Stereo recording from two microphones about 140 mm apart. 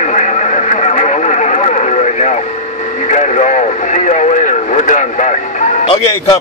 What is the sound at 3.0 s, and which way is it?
Radio, 60° left (ahead or behind).